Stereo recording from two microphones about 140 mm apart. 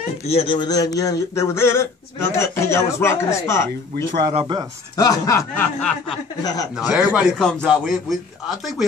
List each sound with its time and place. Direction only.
0.3 s speech: 40° left (ahead or behind); by 3.6 s 20° left (ahead or behind)
4.3 s speech: 45° right (ahead or behind)
4.9 s speech: 25° left (ahead or behind)
5.8 s speech: 5° left (ahead or behind)
6.4 s speech: 25° left (ahead or behind)
6.8 s a man's voice: 5° right (ahead or behind)